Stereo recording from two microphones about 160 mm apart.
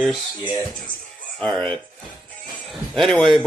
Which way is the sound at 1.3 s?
5° left (ahead or behind).